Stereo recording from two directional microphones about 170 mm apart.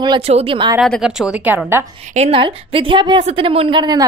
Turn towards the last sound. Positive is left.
turn(degrees=-25)  # may be behind; listen again after turning